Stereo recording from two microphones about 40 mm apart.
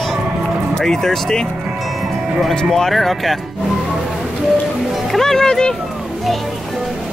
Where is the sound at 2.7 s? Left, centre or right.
Centre.